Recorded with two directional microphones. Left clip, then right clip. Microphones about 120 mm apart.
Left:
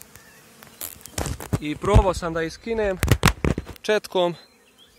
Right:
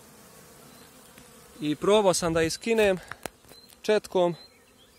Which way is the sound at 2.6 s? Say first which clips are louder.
Right 1 dB; 70° right (ahead or behind).